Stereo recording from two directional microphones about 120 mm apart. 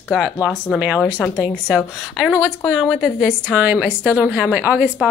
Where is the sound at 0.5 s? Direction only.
10° left (ahead or behind).